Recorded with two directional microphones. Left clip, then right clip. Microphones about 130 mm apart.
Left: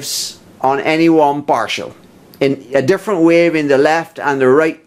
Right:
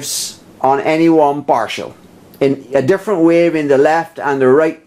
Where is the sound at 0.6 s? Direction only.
20° left (ahead or behind).